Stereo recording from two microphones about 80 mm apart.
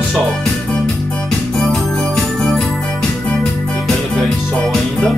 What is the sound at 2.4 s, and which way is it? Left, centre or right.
Jingle bell, centre.